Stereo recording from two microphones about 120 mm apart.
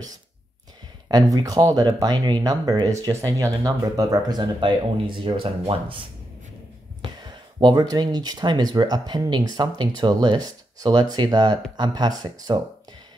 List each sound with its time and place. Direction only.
1.0 s speech: 30° right (ahead or behind)